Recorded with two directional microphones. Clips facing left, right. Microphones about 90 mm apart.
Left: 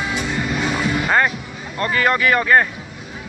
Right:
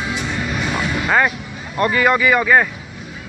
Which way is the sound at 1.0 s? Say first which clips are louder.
Right 2 dB; 5° right (ahead or behind).